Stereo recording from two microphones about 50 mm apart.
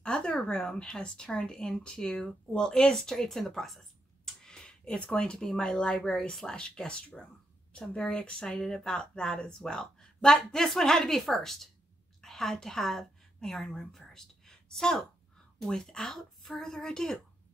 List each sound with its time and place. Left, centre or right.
0.0 s a woman's voice: centre